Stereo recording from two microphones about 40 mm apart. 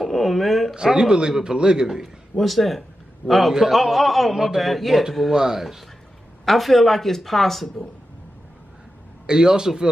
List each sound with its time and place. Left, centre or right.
0.0 s speech: centre
0.7 s speech: centre
2.3 s speech: centre
5.3 s speech: centre
9.2 s a man's voice: centre